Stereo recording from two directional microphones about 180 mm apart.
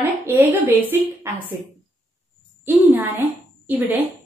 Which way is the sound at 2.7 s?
10° right (ahead or behind).